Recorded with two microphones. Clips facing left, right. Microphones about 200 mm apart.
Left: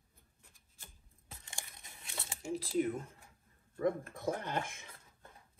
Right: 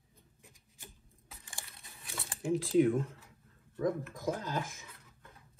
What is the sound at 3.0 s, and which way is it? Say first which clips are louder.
Speech: right 10 dB; 90° right.